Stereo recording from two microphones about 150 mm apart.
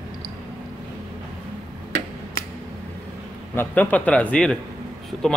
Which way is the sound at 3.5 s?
10° left (ahead or behind).